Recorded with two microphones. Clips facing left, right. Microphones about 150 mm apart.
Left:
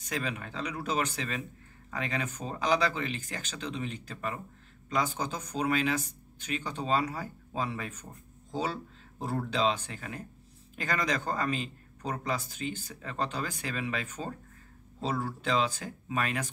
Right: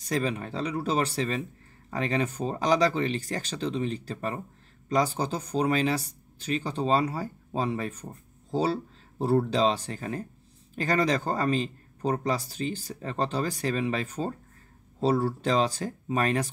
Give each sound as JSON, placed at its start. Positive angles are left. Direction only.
{"t": 0.0, "sound": "speech", "side_deg": -35}